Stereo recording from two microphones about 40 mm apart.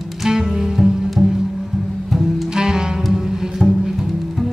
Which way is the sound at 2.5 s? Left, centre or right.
Centre.